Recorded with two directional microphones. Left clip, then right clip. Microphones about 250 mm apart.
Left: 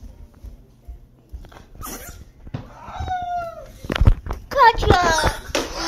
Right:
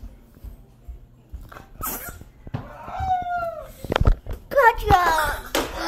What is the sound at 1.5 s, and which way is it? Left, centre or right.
Dog, centre.